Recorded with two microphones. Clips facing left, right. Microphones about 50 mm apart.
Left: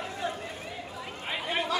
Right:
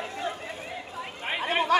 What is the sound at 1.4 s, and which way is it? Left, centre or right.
Chatter, right.